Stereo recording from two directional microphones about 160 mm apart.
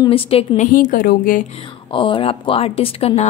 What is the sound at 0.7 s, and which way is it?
Speech, 60° left (ahead or behind).